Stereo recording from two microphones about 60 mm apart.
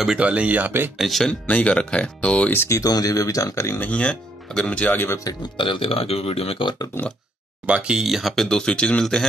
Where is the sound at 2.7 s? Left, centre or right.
Left.